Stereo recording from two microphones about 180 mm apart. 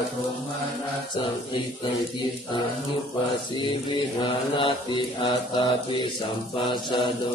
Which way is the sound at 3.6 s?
25° left (ahead or behind).